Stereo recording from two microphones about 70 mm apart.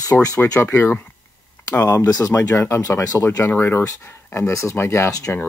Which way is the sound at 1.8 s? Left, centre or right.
Left.